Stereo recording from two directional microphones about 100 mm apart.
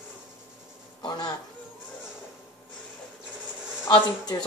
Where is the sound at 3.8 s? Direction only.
45° left (ahead or behind).